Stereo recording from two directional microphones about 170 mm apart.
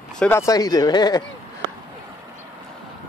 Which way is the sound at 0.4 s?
20° left (ahead or behind).